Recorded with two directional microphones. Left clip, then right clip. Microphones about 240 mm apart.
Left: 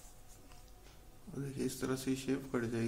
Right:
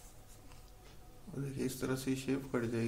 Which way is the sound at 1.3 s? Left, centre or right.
Centre.